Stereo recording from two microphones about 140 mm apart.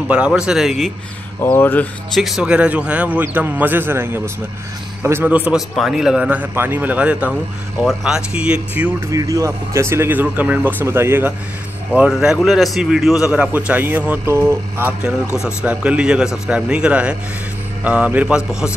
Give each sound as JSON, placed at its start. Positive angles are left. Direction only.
{"t": 0.1, "sound": "speech", "side_deg": -5}
{"t": 1.4, "sound": "speech", "side_deg": 15}
{"t": 2.1, "sound": "a man's voice", "side_deg": 0}
{"t": 9.1, "sound": "a man's voice", "side_deg": -25}